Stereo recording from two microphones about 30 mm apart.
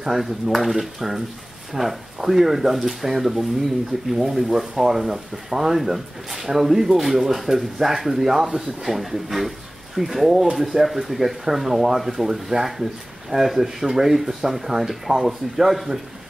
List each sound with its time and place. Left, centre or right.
0.0 s speech: centre